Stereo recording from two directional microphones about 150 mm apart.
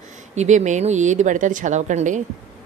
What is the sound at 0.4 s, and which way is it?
Speech, 50° right (ahead or behind).